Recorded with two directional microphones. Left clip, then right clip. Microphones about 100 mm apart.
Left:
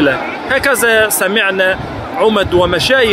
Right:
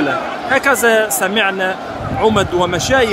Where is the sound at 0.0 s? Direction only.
15° left (ahead or behind).